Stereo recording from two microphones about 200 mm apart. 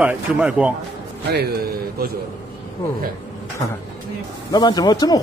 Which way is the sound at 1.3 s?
50° right (ahead or behind).